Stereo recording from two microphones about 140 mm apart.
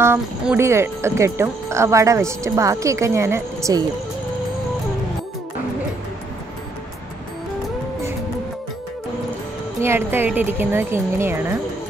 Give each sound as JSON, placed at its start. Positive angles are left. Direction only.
{"t": 0.6, "sound": "speech", "side_deg": -20}
{"t": 9.8, "sound": "speech", "side_deg": -15}